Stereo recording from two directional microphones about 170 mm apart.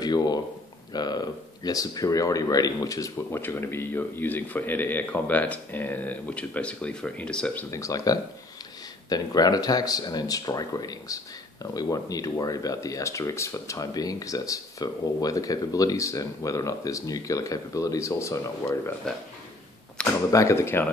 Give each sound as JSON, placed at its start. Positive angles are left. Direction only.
{"t": 0.0, "sound": "speech", "side_deg": 25}
{"t": 7.7, "sound": "speech", "side_deg": 20}
{"t": 20.2, "sound": "speech", "side_deg": 20}